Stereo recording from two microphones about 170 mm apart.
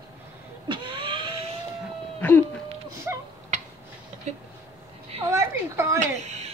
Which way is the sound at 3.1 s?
15° right (ahead or behind).